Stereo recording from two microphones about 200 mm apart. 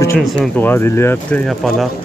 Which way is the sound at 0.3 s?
10° left (ahead or behind).